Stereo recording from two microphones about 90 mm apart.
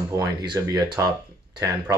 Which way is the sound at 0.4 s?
55° right (ahead or behind).